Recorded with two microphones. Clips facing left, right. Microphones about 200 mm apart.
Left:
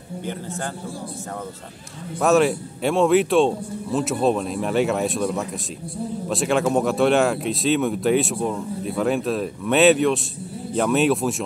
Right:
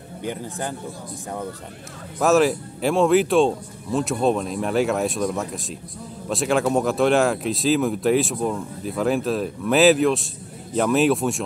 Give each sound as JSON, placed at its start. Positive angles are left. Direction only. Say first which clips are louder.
{"t": 0.2, "sound": "a man's voice", "louder": "right 2 dB", "side_deg": -15}
{"t": 2.1, "sound": "speech", "louder": "even", "side_deg": 0}